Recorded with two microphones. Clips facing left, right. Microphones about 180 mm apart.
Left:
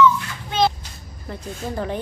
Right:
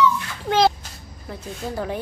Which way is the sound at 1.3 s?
5° right (ahead or behind).